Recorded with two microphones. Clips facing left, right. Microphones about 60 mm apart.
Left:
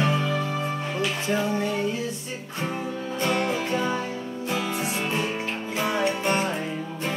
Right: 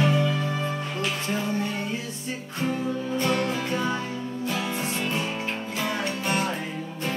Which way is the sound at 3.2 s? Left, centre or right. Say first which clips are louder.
Left 2 dB; left.